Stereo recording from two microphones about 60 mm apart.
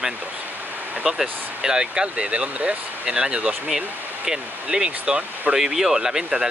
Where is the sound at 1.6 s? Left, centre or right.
Centre.